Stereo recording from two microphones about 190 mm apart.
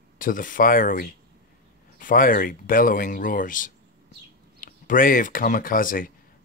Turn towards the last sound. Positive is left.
turn(degrees=45)  # may be behind; listen again after turning